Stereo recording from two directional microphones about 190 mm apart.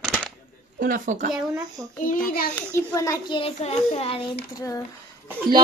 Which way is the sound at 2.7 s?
15° left (ahead or behind).